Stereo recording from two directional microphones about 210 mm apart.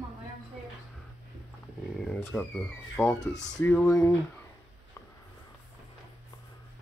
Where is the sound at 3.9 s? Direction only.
15° left (ahead or behind).